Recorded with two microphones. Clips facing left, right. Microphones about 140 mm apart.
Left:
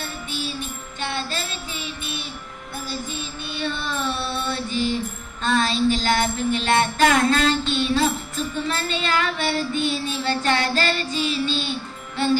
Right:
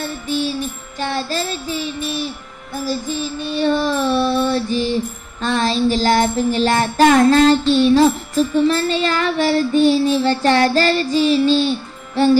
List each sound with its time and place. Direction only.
0.9 s child singing: 40° right (ahead or behind)